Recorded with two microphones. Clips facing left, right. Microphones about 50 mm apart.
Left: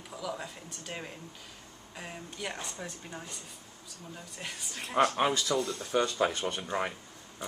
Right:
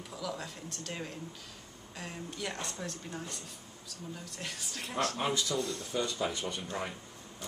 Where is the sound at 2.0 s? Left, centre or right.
Centre.